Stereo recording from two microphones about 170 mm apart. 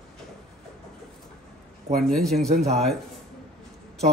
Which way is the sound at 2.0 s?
Centre (ahead or behind).